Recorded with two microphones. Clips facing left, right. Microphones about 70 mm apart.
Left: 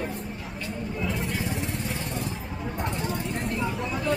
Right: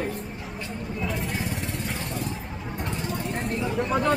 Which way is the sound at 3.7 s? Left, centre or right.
Right.